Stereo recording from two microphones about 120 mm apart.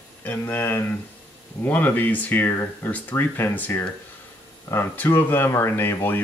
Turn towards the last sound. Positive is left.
turn(degrees=15)  # may be behind; listen again after turning